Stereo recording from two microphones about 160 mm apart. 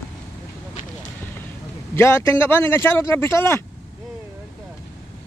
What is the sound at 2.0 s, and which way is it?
Speech, 15° left (ahead or behind).